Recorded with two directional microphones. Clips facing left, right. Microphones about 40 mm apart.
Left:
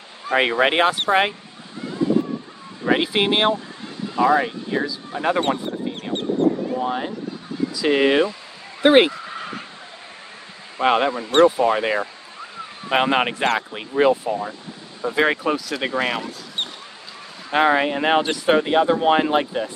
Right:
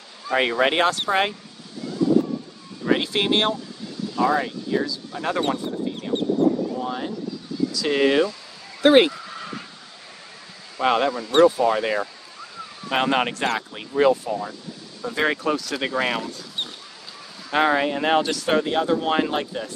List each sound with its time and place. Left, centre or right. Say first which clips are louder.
0.4 s speech: left 2 dB; left
2.8 s speech: left 2 dB; centre
6.1 s a sound: right 3 dB; left
6.8 s speech: left 3 dB; left
8.8 s a sound: left 1 dB; left
10.8 s speech: left 2 dB; left
17.5 s speech: left 2 dB; centre